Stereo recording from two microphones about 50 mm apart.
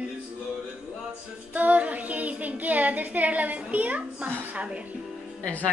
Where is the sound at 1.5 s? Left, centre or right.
Right.